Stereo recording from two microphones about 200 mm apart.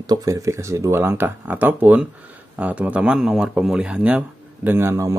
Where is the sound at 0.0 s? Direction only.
20° right (ahead or behind).